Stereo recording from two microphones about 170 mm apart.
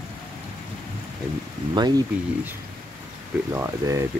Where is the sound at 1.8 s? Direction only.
25° right (ahead or behind).